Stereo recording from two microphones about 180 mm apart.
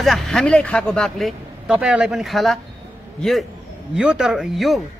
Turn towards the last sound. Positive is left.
turn(degrees=0)  # may be behind; listen again after turning